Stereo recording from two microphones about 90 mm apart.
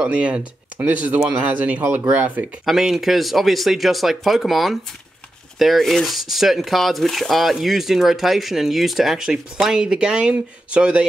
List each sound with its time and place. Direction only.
0.0 s speech: 15° right (ahead or behind)
2.6 s speech: 5° right (ahead or behind)